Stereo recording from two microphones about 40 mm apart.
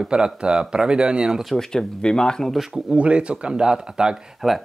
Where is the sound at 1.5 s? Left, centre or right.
Centre.